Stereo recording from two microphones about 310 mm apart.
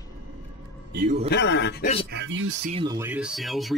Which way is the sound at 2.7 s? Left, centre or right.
Centre.